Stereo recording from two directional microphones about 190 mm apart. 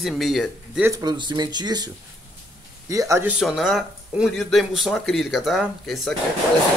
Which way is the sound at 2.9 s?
15° right (ahead or behind).